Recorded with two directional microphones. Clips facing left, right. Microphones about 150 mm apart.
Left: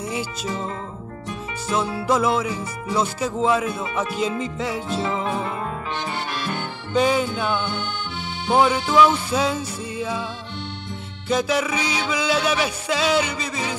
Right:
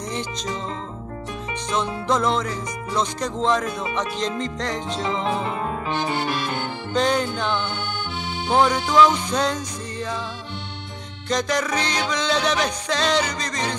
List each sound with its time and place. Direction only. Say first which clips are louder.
1.7 s speech: left 2 dB; 5° left (ahead or behind)
6.9 s speech: left 2 dB; 5° left (ahead or behind)
11.2 s speech: left 2 dB; 5° left (ahead or behind)